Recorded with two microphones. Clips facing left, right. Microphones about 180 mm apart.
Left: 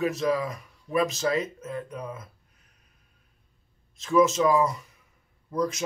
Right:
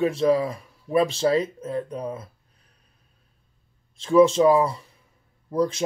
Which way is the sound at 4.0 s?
30° right (ahead or behind).